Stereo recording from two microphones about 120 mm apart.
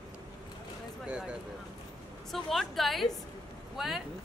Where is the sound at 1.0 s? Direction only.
10° right (ahead or behind).